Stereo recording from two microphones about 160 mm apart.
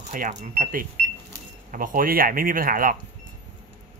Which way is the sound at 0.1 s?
50° right (ahead or behind).